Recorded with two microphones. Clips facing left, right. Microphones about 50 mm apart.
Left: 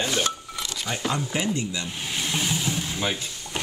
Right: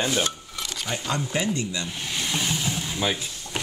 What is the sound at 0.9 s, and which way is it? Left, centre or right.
Speech, centre.